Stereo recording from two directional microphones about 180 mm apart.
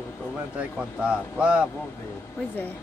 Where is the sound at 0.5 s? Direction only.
5° right (ahead or behind).